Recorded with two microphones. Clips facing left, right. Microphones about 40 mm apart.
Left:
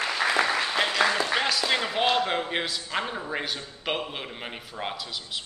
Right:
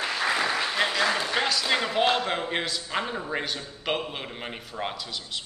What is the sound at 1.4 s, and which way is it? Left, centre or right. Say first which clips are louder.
A man's voice: even; centre.